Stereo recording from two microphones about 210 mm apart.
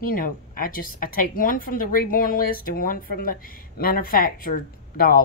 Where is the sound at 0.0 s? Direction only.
40° left (ahead or behind).